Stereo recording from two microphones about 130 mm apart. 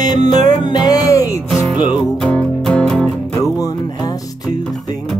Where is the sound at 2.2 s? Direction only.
10° left (ahead or behind).